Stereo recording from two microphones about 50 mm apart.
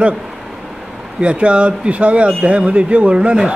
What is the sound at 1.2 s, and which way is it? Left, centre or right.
Speech, right.